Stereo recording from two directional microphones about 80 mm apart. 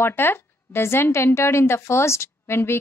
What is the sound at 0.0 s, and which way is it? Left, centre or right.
Speech, left.